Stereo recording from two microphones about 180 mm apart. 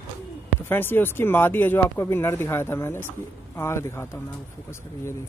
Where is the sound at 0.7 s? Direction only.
10° left (ahead or behind).